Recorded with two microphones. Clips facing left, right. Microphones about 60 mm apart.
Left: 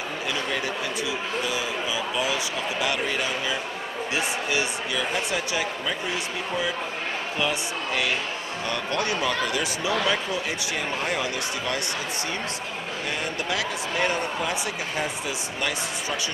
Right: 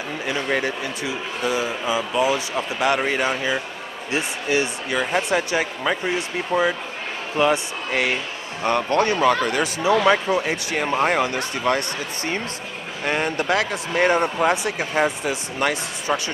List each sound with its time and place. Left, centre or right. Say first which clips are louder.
0.3 s a sound: right 6 dB; right
1.4 s speech: right 4 dB; right
7.3 s speech: right 9 dB; right
13.0 s speech: right 9 dB; right